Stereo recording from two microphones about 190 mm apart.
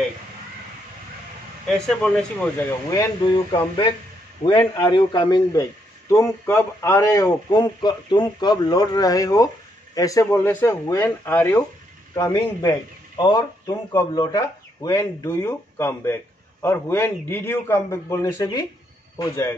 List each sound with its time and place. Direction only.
1.7 s a man's voice: centre (ahead or behind)
3.2 s a man's voice: 25° left (ahead or behind)